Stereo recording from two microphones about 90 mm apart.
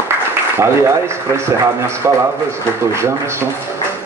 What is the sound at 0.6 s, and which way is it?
A man's voice, 30° right (ahead or behind).